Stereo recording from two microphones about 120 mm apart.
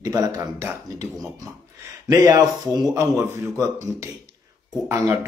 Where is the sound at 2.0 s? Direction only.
30° right (ahead or behind).